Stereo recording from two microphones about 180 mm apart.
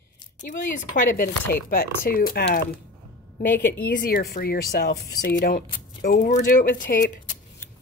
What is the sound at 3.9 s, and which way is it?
Speech, 55° left (ahead or behind).